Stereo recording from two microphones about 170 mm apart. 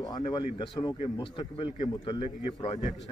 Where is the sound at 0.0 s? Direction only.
25° left (ahead or behind).